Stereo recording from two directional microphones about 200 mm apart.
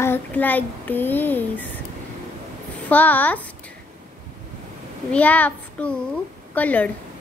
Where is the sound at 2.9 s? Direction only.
10° left (ahead or behind).